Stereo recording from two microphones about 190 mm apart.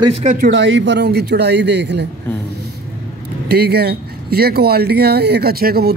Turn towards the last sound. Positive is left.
turn(degrees=-55)  # may be behind; listen again after turning